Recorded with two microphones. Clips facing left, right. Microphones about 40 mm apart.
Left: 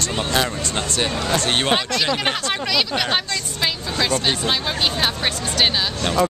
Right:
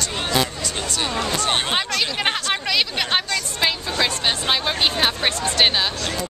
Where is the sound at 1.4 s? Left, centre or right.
Centre.